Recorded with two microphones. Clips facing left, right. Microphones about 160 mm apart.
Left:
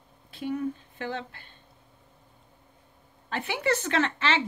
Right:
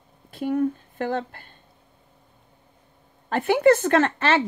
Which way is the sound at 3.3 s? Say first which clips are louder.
Right 11 dB; 50° right (ahead or behind).